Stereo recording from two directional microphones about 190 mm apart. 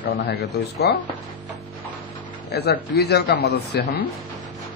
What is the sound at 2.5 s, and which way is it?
A man's voice, 60° left (ahead or behind).